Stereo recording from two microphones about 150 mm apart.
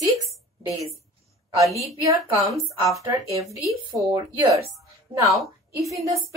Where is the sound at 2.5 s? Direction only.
Centre (ahead or behind).